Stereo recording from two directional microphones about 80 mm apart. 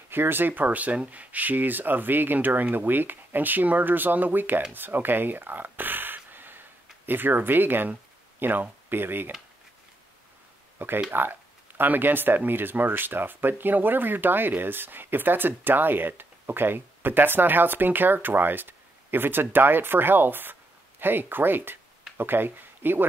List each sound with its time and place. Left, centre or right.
0.1 s speech: right
4.7 s a sound: right
7.1 s speech: right
11.1 s speech: right